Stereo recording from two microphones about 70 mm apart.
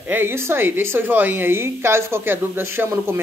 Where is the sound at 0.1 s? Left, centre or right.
Right.